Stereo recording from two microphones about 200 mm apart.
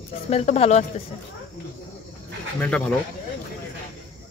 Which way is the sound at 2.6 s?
5° left (ahead or behind).